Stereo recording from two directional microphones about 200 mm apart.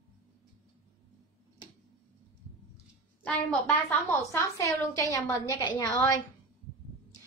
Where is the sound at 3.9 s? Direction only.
15° left (ahead or behind).